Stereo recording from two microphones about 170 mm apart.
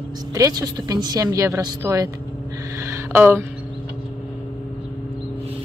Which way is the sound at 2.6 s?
15° right (ahead or behind).